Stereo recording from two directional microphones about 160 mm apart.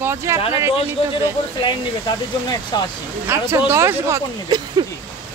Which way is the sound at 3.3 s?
15° right (ahead or behind).